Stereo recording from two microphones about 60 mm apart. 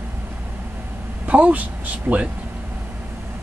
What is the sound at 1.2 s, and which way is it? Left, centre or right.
Speech, right.